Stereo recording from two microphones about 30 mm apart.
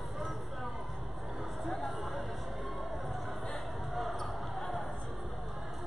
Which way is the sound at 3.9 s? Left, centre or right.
Centre.